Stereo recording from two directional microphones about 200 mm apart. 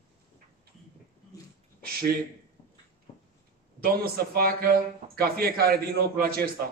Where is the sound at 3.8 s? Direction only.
50° right (ahead or behind).